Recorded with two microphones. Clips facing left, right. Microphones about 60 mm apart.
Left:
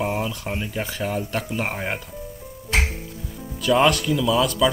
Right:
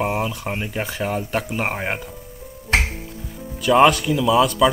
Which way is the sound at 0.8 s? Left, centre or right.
Centre.